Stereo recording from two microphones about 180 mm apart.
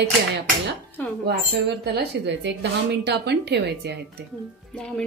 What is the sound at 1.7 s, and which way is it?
A woman's voice, 70° right (ahead or behind).